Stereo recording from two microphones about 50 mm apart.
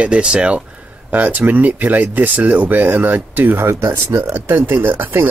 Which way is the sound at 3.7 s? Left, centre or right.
Right.